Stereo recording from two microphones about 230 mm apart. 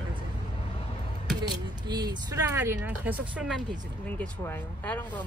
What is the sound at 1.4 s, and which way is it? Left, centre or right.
Speech, centre.